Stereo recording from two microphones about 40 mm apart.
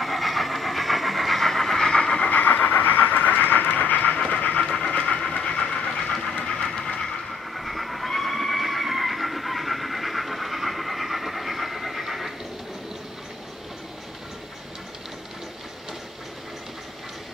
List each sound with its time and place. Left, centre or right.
0.0 s train: centre
2.2 s train: left
4.3 s pant: left
4.7 s train: left
5.9 s pant: centre
6.3 s train: left
7.5 s train: centre